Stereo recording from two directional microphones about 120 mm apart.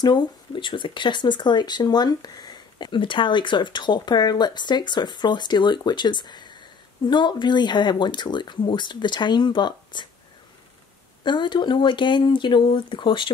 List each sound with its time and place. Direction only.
0.0 s speech: 40° left (ahead or behind)
11.2 s speech: 40° left (ahead or behind)